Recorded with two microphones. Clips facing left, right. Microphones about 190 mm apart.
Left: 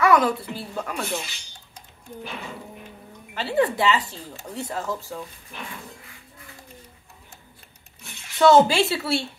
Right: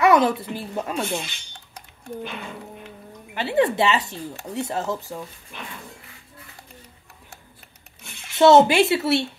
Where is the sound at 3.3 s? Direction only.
20° right (ahead or behind).